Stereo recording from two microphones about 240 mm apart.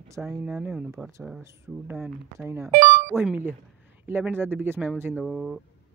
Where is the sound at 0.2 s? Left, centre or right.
Centre.